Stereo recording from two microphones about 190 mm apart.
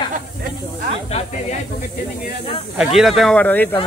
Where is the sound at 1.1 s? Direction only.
35° left (ahead or behind).